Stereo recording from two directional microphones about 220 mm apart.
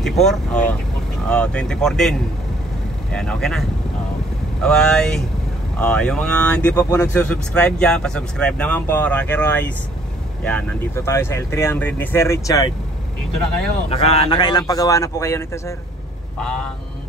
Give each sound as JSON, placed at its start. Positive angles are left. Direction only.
{"t": 0.0, "sound": "speech", "side_deg": 0}
{"t": 13.8, "sound": "speech", "side_deg": 25}